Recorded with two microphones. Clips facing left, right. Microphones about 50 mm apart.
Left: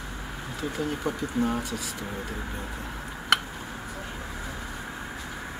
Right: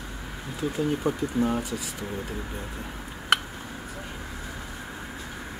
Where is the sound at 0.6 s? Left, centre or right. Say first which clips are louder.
Right 4 dB; centre.